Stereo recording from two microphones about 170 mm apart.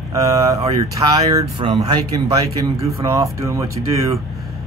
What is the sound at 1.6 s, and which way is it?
Speech, 30° right (ahead or behind).